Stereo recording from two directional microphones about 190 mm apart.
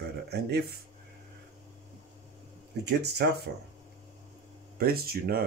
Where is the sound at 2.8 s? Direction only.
60° right (ahead or behind).